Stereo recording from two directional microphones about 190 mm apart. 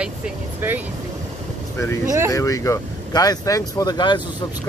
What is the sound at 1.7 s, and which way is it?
Speech, 15° left (ahead or behind).